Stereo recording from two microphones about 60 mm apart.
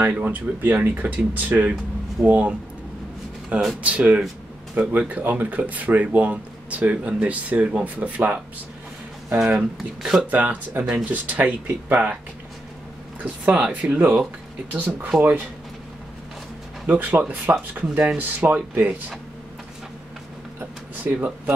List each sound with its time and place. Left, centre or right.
0.0 s speech: right
9.4 s speech: centre
10.2 s speech: right
13.2 s speech: right
15.1 s speech: right
16.8 s speech: right
21.0 s speech: right